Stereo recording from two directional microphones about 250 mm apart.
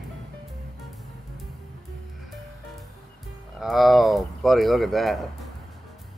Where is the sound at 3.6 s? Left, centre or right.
Centre.